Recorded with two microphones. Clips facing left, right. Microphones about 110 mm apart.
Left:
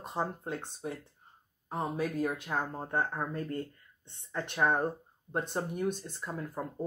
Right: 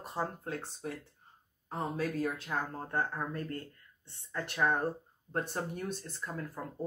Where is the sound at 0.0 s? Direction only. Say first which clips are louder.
Left 2 dB; 20° left (ahead or behind).